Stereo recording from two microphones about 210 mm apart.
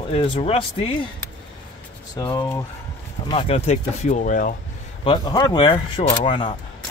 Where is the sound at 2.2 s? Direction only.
20° left (ahead or behind).